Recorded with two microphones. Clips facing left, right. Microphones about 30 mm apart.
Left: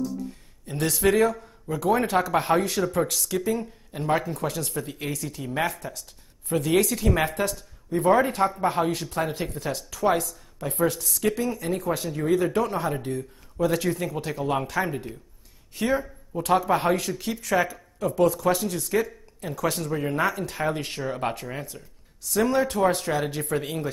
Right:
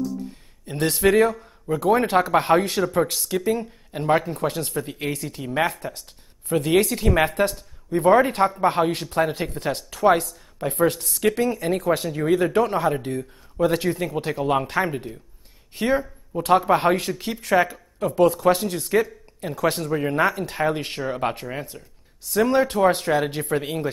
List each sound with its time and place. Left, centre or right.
0.7 s speech: right
1.4 s a man's voice: right
3.2 s speech: right
4.0 s speech: right
5.0 s speech: right
12.5 s speech: right
13.8 s speech: right
14.2 s speech: right
15.7 s speech: right
21.1 s speech: centre
22.5 s speech: right